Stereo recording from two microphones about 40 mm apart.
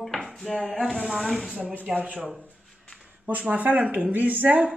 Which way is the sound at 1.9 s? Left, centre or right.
Centre.